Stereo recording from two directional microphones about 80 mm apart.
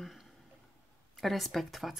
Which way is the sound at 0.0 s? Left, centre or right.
Centre.